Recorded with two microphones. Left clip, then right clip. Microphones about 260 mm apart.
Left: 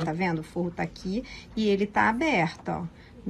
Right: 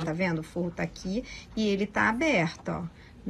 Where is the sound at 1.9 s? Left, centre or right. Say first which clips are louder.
Even; centre.